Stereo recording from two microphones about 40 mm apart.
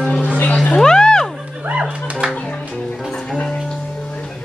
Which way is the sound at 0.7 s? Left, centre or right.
Centre.